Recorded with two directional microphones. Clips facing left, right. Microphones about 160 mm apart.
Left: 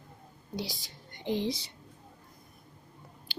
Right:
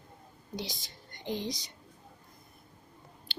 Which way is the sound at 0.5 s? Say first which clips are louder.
Left 2 dB; 5° left (ahead or behind).